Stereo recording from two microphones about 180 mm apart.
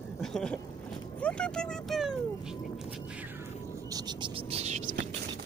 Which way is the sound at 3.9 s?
25° right (ahead or behind).